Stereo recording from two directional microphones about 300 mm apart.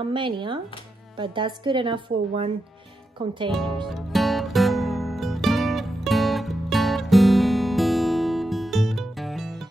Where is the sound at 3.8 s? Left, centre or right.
Centre.